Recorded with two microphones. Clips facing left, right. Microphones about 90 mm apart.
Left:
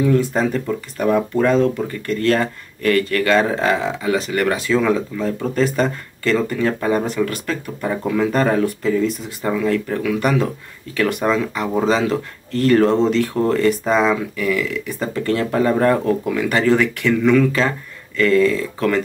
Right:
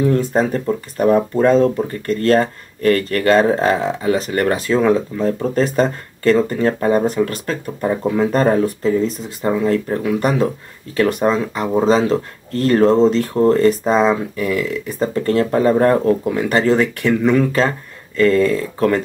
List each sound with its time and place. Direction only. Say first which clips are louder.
0.0 s speech: right 1 dB; 35° right (ahead or behind)